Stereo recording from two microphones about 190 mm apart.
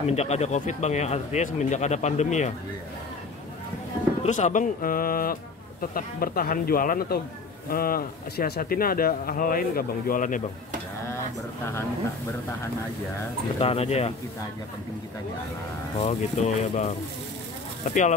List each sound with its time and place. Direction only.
0.0 s speech: 35° left (ahead or behind)
4.2 s speech: 40° left (ahead or behind)
13.6 s speech: 30° left (ahead or behind)
16.0 s speech: 35° left (ahead or behind)